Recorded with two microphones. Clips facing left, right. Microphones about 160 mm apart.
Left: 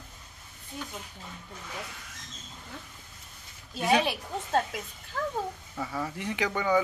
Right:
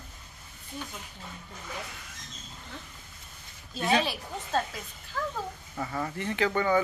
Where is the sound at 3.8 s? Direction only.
10° left (ahead or behind).